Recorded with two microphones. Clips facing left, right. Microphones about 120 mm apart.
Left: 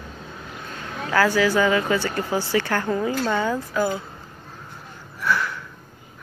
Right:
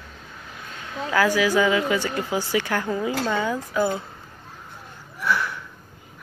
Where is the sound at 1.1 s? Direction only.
15° right (ahead or behind).